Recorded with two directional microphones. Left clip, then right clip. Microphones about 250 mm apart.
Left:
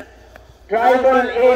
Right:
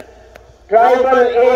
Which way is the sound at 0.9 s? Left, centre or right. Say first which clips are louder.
Right 3 dB; right.